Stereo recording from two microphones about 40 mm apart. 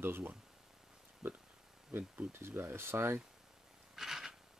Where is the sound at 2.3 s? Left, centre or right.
Right.